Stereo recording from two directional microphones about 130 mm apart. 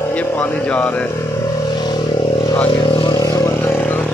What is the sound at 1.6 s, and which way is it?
Vehicle, 35° left (ahead or behind).